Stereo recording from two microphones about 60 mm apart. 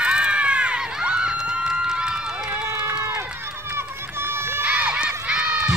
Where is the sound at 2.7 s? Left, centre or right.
Right.